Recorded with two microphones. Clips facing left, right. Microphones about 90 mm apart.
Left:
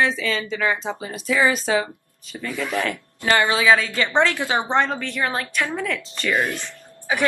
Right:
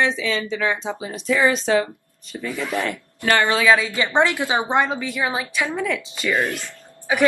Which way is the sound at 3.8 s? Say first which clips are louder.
Right 1 dB; 20° right (ahead or behind).